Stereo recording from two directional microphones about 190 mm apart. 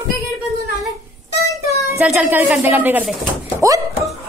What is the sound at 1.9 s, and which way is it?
A woman's voice, 5° right (ahead or behind).